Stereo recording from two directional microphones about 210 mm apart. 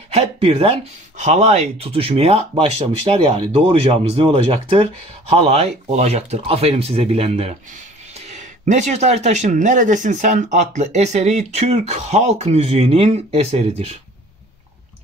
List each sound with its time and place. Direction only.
0.1 s speech: 30° right (ahead or behind)